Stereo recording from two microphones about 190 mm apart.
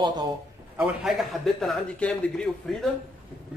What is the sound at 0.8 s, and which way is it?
A man's voice, centre (ahead or behind).